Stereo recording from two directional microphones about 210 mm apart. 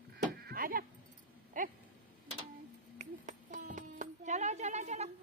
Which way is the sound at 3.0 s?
35° right (ahead or behind).